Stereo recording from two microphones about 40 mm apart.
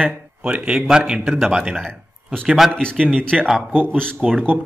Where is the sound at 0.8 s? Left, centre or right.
Centre.